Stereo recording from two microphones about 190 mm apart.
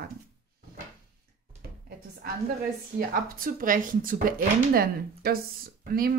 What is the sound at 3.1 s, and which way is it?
Speech, 50° right (ahead or behind).